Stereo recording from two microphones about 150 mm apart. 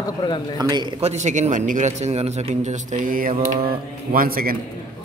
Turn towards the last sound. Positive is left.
turn(degrees=-75)  # may be behind; listen again after turning